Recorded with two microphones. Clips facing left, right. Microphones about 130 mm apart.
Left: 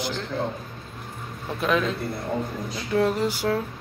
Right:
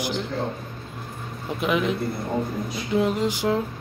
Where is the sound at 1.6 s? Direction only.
15° right (ahead or behind).